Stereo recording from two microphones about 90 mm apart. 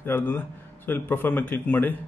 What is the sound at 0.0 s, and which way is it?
Speech, 25° left (ahead or behind).